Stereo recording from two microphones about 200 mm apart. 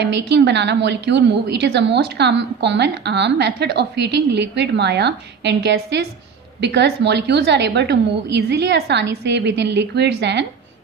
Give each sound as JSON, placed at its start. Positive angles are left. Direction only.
{"t": 0.0, "sound": "a woman's voice", "side_deg": -60}